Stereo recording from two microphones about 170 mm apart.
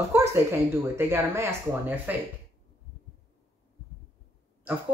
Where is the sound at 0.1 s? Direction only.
15° right (ahead or behind).